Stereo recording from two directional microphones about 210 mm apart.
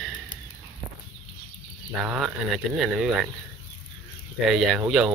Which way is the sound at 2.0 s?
5° right (ahead or behind).